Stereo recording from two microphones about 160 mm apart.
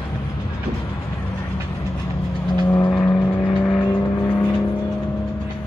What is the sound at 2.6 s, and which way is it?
Vehicle, 15° left (ahead or behind).